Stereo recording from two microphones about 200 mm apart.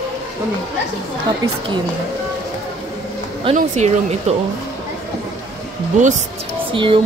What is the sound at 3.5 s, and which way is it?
Speech, 35° right (ahead or behind).